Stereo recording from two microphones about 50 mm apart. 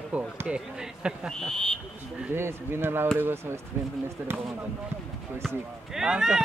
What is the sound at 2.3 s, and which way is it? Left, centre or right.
Speech, right.